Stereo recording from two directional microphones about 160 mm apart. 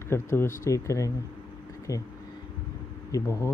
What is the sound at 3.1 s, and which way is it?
Speech, 15° left (ahead or behind).